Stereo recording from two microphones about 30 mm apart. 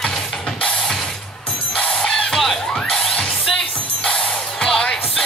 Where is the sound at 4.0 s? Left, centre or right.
Left.